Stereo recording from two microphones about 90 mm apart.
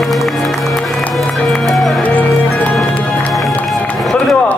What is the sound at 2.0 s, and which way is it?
Music, 15° left (ahead or behind).